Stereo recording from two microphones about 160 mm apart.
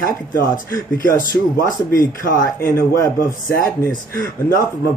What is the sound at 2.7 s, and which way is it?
Speech, 20° left (ahead or behind).